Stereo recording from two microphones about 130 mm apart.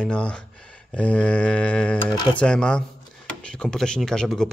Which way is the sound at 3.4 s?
5° left (ahead or behind).